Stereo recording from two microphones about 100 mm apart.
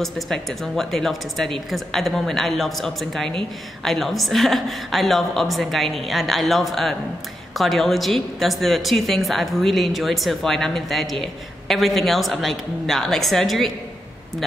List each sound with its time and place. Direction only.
0.0 s a woman's voice: centre (ahead or behind)